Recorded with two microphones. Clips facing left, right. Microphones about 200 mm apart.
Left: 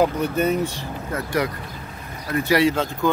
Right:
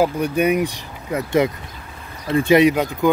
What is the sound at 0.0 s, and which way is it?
Speech, 15° right (ahead or behind).